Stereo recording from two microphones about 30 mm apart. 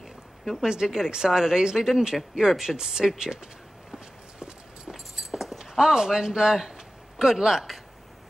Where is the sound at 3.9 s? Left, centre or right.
Centre.